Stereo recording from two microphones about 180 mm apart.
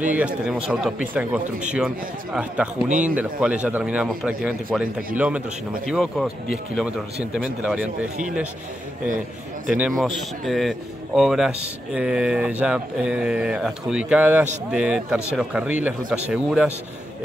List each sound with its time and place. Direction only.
0.0 s a man's voice: 5° right (ahead or behind)
2.9 s speech: 45° right (ahead or behind)
3.2 s a man's voice: 5° right (ahead or behind)
7.6 s a man's voice: 5° right (ahead or behind)
9.7 s a man's voice: 5° right (ahead or behind)